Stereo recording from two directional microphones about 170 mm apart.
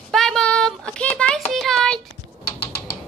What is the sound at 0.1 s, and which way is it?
Child singing, centre (ahead or behind).